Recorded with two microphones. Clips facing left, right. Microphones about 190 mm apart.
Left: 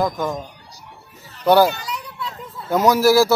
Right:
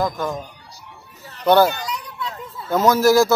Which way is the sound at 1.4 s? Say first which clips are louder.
Even; 10° left (ahead or behind).